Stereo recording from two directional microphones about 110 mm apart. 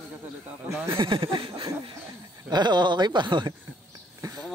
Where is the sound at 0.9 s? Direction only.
55° right (ahead or behind).